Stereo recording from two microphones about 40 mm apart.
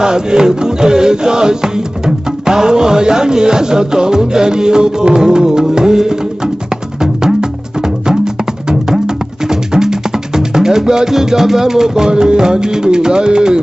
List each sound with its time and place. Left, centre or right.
0.0 s chant: centre
7.0 s music: centre
9.8 s music: centre